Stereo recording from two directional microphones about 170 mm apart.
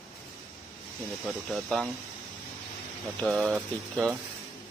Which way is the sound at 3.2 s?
Centre (ahead or behind).